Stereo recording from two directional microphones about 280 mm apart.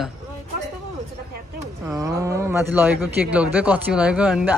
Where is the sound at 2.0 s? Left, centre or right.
Centre.